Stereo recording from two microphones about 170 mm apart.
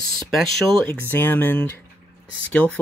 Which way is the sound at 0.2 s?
Centre (ahead or behind).